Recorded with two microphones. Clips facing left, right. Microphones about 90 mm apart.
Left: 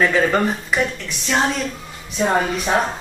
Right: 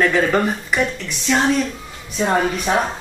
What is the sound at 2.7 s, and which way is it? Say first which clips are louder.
Speech: even; centre (ahead or behind).